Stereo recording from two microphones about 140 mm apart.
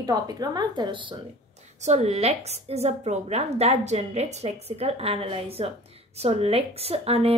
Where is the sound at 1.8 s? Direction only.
50° right (ahead or behind).